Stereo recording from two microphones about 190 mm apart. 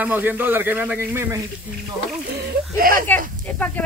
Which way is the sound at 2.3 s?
50° right (ahead or behind).